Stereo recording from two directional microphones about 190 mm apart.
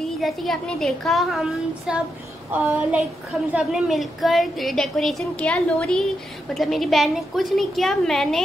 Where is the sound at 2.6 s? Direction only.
5° right (ahead or behind).